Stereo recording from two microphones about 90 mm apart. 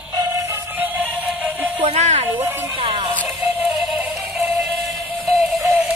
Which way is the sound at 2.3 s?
25° right (ahead or behind).